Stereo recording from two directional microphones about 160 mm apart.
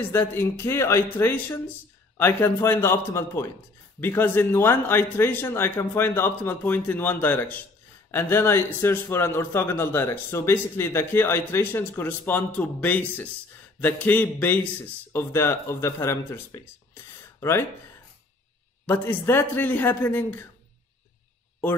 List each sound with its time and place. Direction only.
0.0 s a man's voice: 15° left (ahead or behind)
18.9 s a man's voice: 15° left (ahead or behind)